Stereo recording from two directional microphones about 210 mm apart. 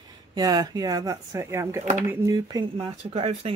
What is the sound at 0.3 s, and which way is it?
Speech, 20° right (ahead or behind).